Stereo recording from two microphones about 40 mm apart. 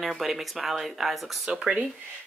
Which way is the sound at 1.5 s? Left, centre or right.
Right.